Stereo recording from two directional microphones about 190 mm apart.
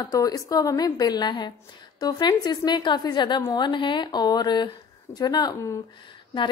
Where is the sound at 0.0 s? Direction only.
20° left (ahead or behind).